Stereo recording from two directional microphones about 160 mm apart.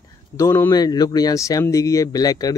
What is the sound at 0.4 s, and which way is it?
Speech, 20° left (ahead or behind).